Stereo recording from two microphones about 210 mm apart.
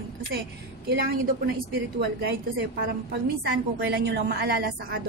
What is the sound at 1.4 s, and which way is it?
A woman's voice, 50° right (ahead or behind).